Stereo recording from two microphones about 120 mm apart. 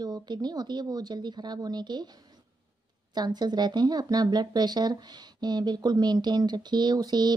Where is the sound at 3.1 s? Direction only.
35° right (ahead or behind).